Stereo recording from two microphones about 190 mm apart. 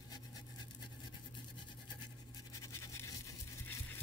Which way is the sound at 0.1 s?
20° left (ahead or behind).